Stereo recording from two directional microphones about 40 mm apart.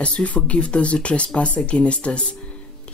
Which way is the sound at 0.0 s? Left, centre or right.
Left.